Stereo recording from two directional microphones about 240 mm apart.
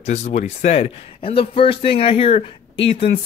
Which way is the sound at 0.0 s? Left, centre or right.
Left.